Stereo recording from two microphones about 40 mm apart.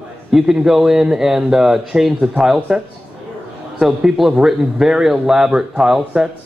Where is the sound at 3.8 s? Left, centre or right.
Centre.